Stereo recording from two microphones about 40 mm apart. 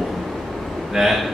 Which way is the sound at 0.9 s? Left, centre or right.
Centre.